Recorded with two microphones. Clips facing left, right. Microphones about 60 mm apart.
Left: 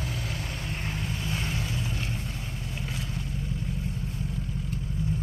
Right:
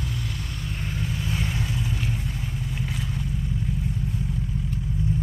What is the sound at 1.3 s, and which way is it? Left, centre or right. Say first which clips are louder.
Vehicle: right 2 dB; centre.